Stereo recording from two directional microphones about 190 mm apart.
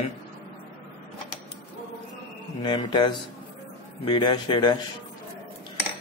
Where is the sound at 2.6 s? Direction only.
25° left (ahead or behind).